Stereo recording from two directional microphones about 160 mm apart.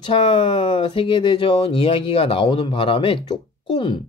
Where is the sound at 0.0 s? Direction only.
30° left (ahead or behind).